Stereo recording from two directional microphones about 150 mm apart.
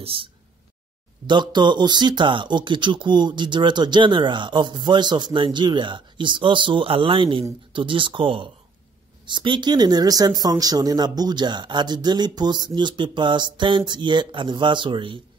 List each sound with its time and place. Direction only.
0.0 s speech: 35° right (ahead or behind)